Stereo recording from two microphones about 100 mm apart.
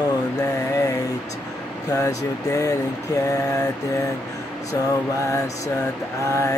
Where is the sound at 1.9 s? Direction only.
35° left (ahead or behind).